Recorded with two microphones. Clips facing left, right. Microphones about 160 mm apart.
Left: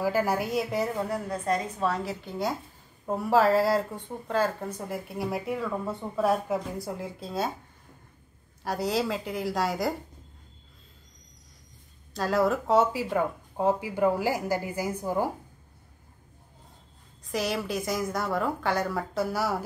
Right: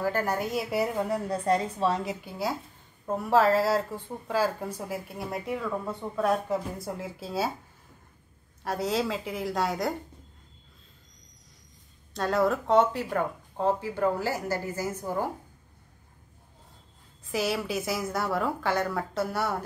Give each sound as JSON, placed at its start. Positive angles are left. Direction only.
{"t": 0.0, "sound": "speech", "side_deg": 10}
{"t": 1.4, "sound": "a woman's voice", "side_deg": -30}
{"t": 2.0, "sound": "a woman's voice", "side_deg": -5}
{"t": 8.6, "sound": "speech", "side_deg": 0}
{"t": 12.1, "sound": "speech", "side_deg": 0}
{"t": 17.2, "sound": "speech", "side_deg": 0}